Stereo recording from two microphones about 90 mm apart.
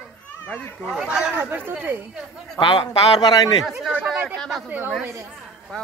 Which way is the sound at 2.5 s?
60° left (ahead or behind).